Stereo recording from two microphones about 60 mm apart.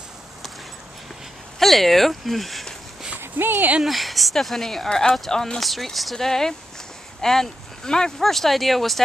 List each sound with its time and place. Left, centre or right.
1.6 s a sound: centre
3.2 s speech: right
3.8 s speech: centre